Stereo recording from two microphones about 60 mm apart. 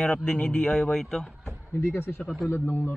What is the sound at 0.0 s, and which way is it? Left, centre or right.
Speech, centre.